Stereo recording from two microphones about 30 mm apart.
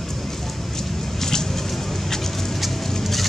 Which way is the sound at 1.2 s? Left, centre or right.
Centre.